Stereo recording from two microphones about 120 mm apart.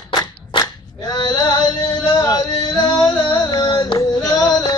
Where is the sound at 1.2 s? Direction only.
40° left (ahead or behind).